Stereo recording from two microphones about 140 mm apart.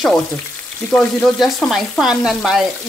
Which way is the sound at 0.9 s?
5° left (ahead or behind).